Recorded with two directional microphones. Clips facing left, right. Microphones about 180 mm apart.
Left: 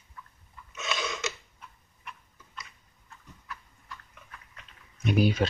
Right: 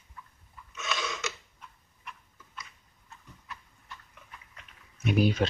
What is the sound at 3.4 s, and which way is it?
Horse, 25° right (ahead or behind).